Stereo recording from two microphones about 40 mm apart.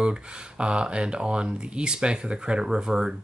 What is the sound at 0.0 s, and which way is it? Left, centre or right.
Speech, right.